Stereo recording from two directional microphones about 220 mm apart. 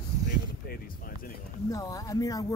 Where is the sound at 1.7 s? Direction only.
15° left (ahead or behind).